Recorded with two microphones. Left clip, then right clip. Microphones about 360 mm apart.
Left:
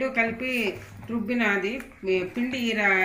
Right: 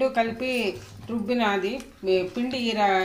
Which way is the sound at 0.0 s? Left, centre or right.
Right.